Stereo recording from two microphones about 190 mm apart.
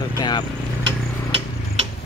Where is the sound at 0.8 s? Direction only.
30° right (ahead or behind).